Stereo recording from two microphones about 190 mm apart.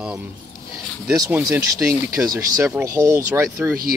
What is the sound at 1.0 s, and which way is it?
Speech, 15° right (ahead or behind).